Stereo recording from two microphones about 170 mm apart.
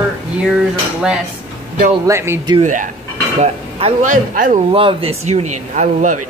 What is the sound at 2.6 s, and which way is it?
Speech, 45° right (ahead or behind).